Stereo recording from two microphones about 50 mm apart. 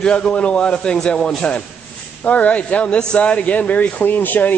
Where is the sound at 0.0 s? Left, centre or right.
Centre.